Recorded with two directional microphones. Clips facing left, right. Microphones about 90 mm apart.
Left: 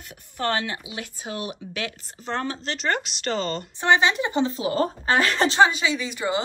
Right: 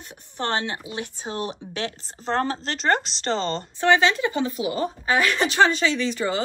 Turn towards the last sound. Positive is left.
turn(degrees=15)  # may be behind; listen again after turning